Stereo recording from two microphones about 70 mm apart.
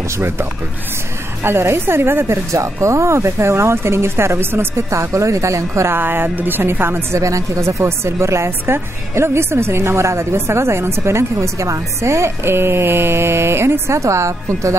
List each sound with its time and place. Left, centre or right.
1.4 s speech: right
4.9 s speech: right
5.9 s speech: right
7.2 s speech: right